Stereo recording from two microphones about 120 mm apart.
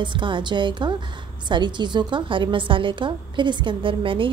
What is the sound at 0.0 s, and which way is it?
A woman's voice, 40° right (ahead or behind).